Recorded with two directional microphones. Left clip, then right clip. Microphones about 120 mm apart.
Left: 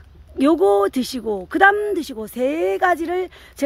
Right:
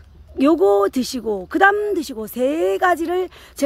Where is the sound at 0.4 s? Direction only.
5° right (ahead or behind).